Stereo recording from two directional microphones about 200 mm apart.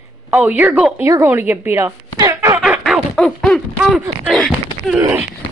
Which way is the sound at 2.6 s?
Centre (ahead or behind).